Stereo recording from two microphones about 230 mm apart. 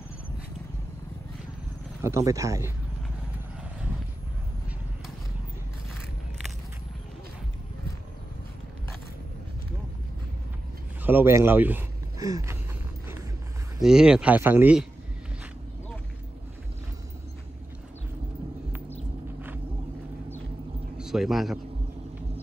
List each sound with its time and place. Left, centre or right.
2.0 s speech: centre
11.1 s speech: centre
13.7 s speech: centre
21.0 s a man's voice: centre